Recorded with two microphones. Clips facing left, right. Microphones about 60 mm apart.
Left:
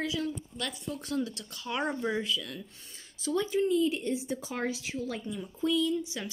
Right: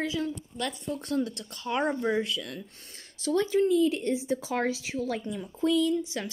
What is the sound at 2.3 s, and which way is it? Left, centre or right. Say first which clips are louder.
Speech: right 1 dB; right.